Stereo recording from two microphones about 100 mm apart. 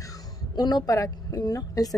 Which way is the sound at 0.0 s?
35° left (ahead or behind).